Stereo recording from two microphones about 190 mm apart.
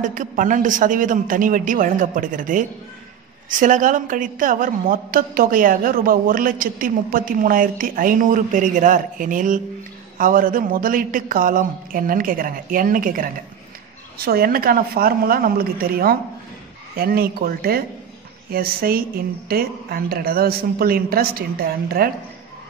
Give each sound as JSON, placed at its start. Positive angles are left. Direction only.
{"t": 0.0, "sound": "a woman's voice", "side_deg": -45}